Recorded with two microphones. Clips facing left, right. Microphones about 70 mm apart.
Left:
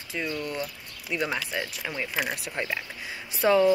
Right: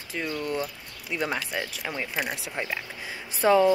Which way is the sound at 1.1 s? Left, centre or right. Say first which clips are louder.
Even; centre.